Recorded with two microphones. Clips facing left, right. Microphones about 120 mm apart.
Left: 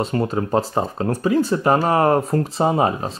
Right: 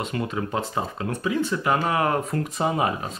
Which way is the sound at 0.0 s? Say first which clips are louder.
Left 6 dB; 35° left (ahead or behind).